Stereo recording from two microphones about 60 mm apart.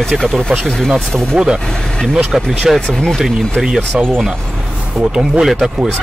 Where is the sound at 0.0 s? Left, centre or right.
Centre.